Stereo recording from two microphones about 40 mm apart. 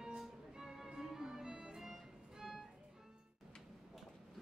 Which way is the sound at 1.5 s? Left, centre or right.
Right.